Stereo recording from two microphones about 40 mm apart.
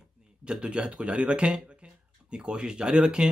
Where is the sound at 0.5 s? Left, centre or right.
Right.